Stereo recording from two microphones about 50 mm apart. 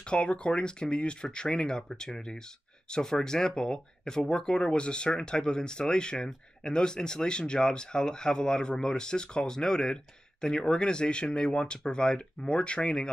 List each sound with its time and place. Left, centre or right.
0.1 s speech: left